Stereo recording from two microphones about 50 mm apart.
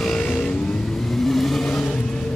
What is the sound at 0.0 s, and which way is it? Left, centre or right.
Vehicle, centre.